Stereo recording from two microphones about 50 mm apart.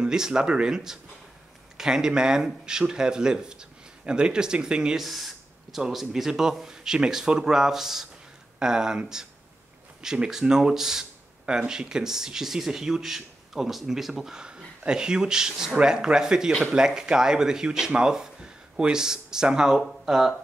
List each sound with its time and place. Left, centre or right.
0.0 s speech: centre
5.0 s speech: centre